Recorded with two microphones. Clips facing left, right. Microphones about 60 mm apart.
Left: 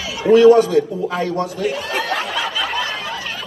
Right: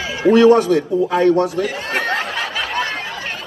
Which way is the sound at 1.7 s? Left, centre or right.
Right.